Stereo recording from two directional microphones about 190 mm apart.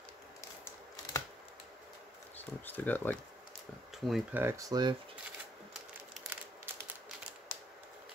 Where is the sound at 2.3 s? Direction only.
10° left (ahead or behind).